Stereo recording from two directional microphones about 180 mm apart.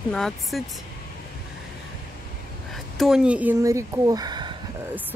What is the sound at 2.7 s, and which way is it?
Speech, centre (ahead or behind).